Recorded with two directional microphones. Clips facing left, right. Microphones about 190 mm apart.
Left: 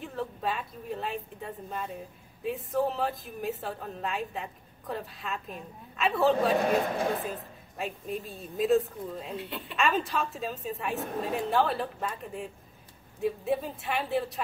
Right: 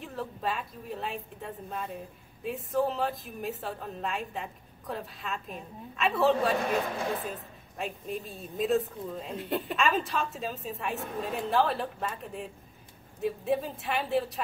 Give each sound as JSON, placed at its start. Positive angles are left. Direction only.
{"t": 0.0, "sound": "a woman's voice", "side_deg": 0}
{"t": 9.4, "sound": "speech", "side_deg": -45}
{"t": 9.8, "sound": "a woman's voice", "side_deg": 0}